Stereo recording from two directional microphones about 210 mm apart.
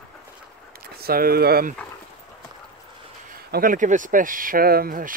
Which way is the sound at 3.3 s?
40° right (ahead or behind).